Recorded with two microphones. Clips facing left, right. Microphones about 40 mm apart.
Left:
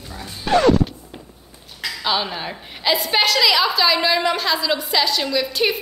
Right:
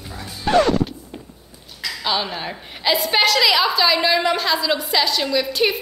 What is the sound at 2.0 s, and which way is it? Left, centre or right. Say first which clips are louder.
A woman's voice: left 1 dB; centre.